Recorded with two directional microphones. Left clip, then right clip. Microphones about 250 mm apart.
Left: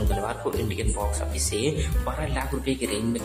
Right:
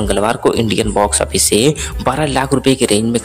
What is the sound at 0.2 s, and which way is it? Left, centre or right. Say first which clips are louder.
Speech: right 17 dB; right.